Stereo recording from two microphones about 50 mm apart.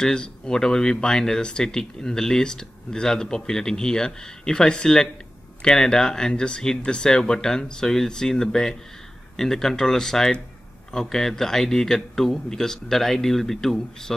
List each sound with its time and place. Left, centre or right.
0.0 s speech: centre